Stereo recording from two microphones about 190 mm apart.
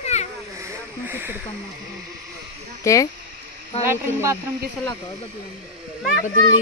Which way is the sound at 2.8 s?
15° left (ahead or behind).